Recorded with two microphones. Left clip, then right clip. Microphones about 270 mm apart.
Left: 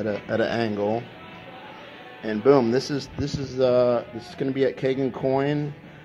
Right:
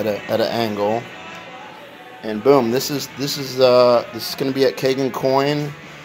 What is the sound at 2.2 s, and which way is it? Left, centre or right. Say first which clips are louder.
Speech: right 4 dB; centre.